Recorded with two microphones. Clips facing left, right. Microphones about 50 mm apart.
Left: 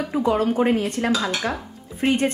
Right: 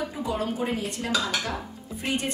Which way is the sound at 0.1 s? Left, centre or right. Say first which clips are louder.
Left 9 dB; left.